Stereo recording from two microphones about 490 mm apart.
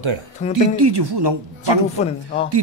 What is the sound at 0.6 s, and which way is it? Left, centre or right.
Speech, right.